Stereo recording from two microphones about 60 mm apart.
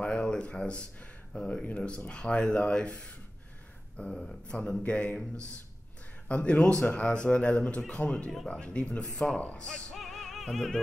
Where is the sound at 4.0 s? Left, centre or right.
Centre.